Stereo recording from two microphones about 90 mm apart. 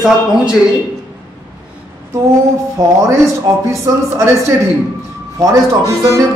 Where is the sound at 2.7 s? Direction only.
35° right (ahead or behind).